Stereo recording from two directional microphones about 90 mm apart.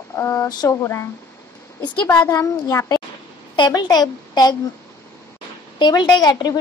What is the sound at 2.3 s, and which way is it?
Speech, 35° left (ahead or behind).